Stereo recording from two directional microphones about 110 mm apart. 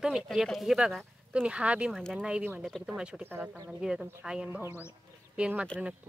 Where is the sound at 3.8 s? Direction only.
10° right (ahead or behind).